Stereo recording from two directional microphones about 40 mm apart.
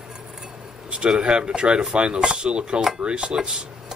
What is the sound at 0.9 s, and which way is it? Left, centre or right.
A man's voice, right.